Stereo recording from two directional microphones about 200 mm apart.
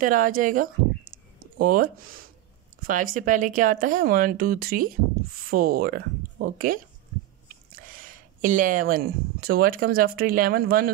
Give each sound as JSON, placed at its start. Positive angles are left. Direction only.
{"t": 0.0, "sound": "speech", "side_deg": -40}
{"t": 7.9, "sound": "speech", "side_deg": -45}